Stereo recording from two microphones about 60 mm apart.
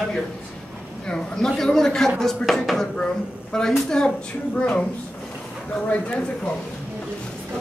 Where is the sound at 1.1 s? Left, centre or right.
Centre.